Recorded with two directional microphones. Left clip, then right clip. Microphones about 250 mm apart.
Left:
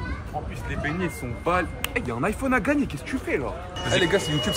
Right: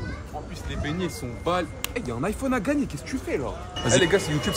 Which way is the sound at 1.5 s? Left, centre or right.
Centre.